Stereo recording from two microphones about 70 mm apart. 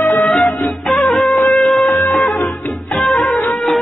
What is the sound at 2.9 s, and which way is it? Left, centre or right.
Music, centre.